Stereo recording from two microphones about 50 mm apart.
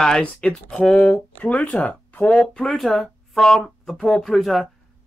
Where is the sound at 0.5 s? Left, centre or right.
Centre.